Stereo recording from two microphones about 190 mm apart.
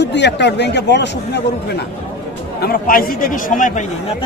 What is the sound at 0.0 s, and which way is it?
Speech, 65° left (ahead or behind).